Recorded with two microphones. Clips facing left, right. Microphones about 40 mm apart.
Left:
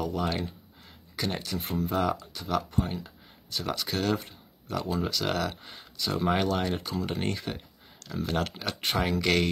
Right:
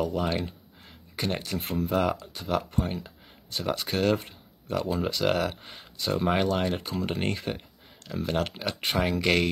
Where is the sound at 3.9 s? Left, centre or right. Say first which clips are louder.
Right 4 dB; right.